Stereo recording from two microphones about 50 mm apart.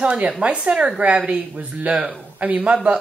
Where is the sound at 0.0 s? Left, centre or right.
Right.